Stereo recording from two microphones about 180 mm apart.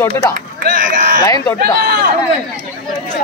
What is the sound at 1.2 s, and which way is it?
Speech, 15° left (ahead or behind).